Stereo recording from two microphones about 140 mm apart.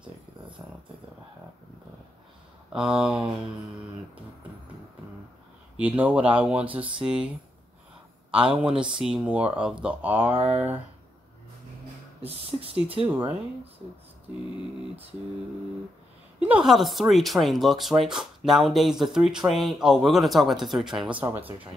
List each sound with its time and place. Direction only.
2.7 s speech: 5° right (ahead or behind)
5.8 s speech: 10° right (ahead or behind)
8.9 s speech: 5° right (ahead or behind)
12.2 s speech: 45° right (ahead or behind)
13.0 s speech: 10° right (ahead or behind)
16.4 s speech: 5° right (ahead or behind)